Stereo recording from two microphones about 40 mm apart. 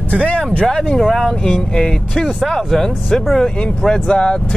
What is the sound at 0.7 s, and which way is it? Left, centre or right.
Speech, centre.